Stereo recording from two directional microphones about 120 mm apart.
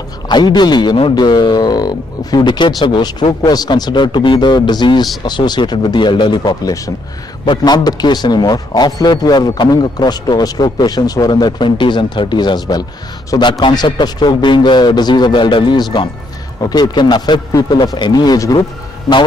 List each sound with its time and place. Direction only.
0.3 s a man's voice: 35° left (ahead or behind)